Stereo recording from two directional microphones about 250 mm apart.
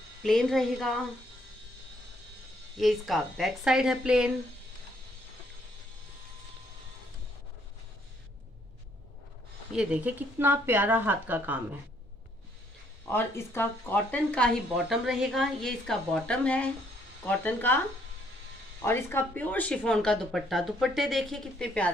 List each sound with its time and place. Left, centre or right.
0.2 s speech: centre
2.8 s speech: centre
9.7 s speech: centre
13.0 s speech: centre
18.8 s speech: centre